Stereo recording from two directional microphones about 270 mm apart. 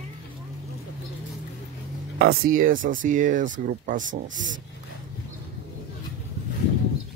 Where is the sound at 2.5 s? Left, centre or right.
Right.